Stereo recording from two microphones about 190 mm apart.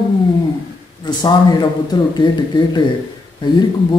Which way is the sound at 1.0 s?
25° left (ahead or behind).